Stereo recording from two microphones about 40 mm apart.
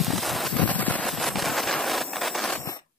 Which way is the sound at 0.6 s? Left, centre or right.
Left.